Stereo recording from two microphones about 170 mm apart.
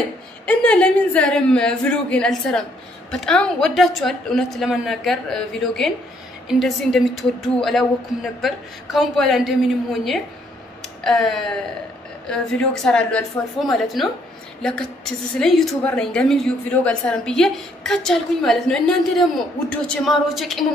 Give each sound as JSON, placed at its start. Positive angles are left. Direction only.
{"t": 0.5, "sound": "a woman's voice", "side_deg": 5}
{"t": 10.8, "sound": "a sound", "side_deg": 0}
{"t": 12.3, "sound": "a woman's voice", "side_deg": 5}